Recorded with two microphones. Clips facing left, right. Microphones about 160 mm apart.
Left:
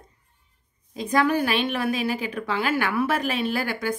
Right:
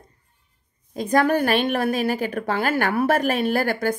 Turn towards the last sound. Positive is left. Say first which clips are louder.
# right 5 dB
turn(degrees=-50)  # may be behind; listen again after turning